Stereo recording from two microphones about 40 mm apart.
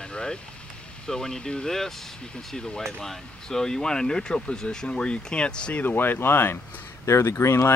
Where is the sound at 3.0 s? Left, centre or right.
Centre.